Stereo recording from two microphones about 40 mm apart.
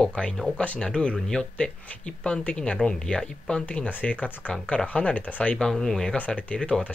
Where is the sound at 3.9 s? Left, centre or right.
Left.